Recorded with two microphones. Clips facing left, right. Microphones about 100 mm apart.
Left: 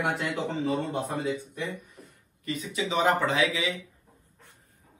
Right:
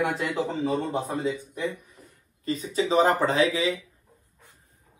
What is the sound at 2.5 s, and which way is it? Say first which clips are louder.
Speech: right 5 dB; 35° right (ahead or behind).